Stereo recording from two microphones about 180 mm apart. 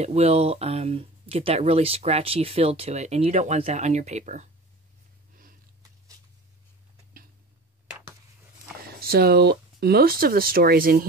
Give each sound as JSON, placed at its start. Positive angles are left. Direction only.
{"t": 0.0, "sound": "speech", "side_deg": -35}
{"t": 5.3, "sound": "a sound", "side_deg": -50}
{"t": 9.0, "sound": "speech", "side_deg": -60}